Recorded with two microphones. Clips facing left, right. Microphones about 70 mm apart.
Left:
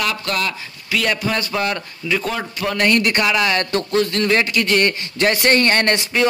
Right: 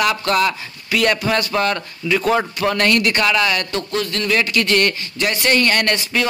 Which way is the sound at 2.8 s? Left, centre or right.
Centre.